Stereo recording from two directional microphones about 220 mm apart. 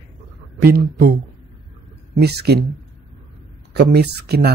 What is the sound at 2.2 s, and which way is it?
Speech, 45° right (ahead or behind).